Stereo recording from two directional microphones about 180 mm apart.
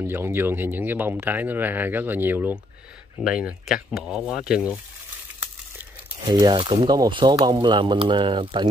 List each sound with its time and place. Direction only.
0.0 s speech: 15° right (ahead or behind)
6.2 s speech: 25° right (ahead or behind)